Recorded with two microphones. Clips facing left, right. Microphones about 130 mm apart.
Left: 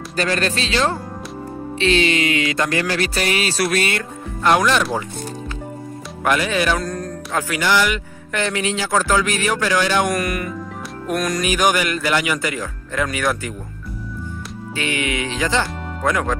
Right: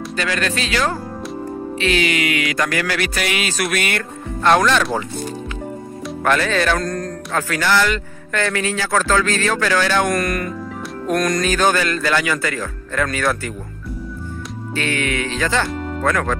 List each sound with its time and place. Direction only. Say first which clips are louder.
0.1 s speech: left 2 dB; 35° left (ahead or behind)
1.8 s music: left 2 dB; 30° left (ahead or behind)
4.4 s speech: right 1 dB; 10° left (ahead or behind)
6.2 s speech: right 1 dB; 10° left (ahead or behind)
14.8 s speech: right 1 dB; 15° left (ahead or behind)